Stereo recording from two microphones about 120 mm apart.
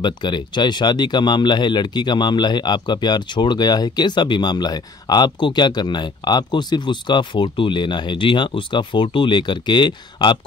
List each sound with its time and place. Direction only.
0.0 s speech: 40° left (ahead or behind)